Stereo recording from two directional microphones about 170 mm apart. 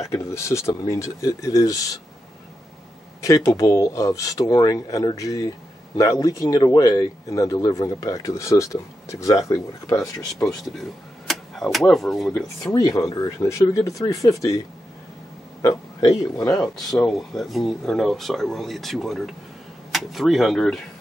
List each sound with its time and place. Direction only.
0.0 s speech: 15° left (ahead or behind)
3.2 s speech: 20° left (ahead or behind)
10.5 s speech: centre (ahead or behind)
12.6 s speech: 20° left (ahead or behind)
15.6 s speech: 20° left (ahead or behind)
16.6 s speech: centre (ahead or behind)